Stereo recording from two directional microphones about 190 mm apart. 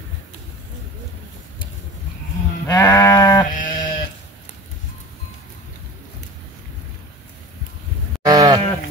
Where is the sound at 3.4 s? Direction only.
45° left (ahead or behind).